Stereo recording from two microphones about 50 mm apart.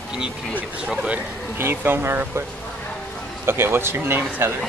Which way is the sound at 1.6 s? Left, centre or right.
Right.